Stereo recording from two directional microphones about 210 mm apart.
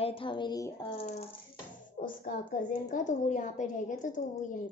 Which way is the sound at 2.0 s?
35° left (ahead or behind).